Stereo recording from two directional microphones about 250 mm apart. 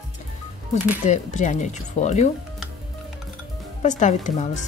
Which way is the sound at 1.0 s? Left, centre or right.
Left.